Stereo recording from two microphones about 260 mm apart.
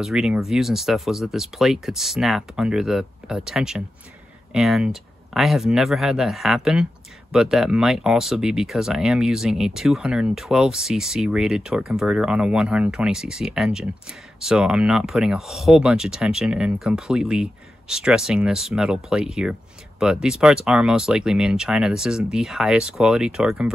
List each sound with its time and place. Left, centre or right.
0.0 s speech: centre